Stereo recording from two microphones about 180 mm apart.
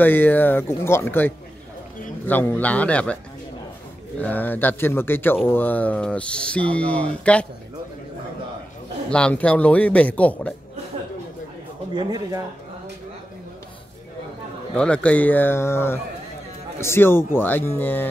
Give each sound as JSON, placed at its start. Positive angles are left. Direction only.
{"t": 0.0, "sound": "speech", "side_deg": 10}
{"t": 4.2, "sound": "speech", "side_deg": 10}
{"t": 9.1, "sound": "speech", "side_deg": 5}
{"t": 11.9, "sound": "speech", "side_deg": -25}
{"t": 14.8, "sound": "speech", "side_deg": 5}